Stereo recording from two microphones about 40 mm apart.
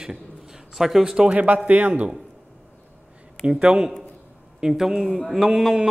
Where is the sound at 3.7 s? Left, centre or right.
Centre.